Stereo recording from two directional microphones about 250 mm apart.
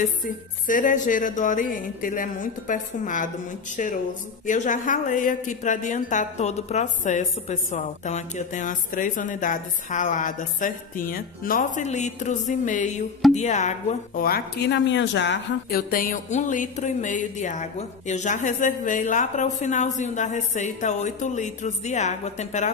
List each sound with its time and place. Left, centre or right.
0.7 s speech: left
4.5 s speech: left